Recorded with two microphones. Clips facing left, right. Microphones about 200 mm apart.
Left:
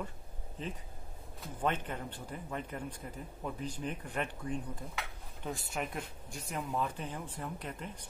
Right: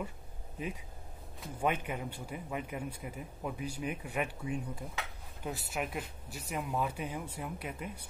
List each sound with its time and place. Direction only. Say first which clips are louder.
0.6 s a man's voice: right 2 dB; 10° right (ahead or behind)